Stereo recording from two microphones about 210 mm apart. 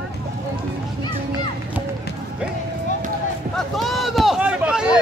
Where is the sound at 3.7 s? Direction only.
Centre (ahead or behind).